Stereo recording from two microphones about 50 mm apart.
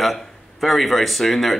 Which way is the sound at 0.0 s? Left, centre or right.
Centre.